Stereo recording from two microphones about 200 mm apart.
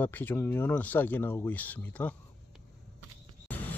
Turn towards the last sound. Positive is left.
turn(degrees=10)  # may be behind; listen again after turning